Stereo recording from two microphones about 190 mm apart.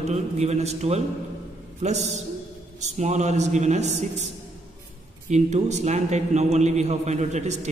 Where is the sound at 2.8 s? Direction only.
40° right (ahead or behind).